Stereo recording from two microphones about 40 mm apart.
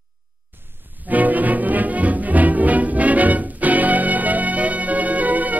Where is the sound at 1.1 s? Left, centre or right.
Right.